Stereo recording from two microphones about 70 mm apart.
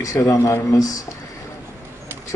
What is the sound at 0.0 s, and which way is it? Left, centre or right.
Speech, left.